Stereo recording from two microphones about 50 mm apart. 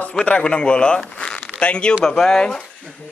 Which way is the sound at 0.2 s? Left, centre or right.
Left.